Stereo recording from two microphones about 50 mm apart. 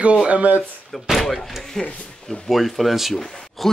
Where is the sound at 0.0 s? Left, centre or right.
Right.